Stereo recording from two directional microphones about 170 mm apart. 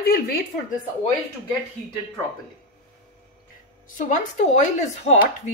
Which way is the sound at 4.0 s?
45° left (ahead or behind).